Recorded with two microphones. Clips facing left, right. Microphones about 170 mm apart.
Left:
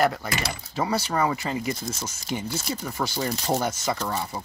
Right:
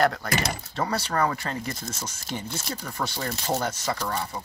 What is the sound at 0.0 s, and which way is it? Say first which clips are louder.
Speech: even; 5° left (ahead or behind).